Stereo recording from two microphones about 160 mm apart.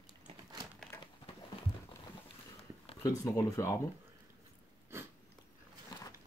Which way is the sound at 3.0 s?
20° left (ahead or behind).